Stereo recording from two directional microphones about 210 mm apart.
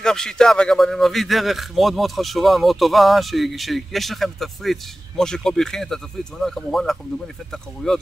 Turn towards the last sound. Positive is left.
turn(degrees=0)  # may be behind; listen again after turning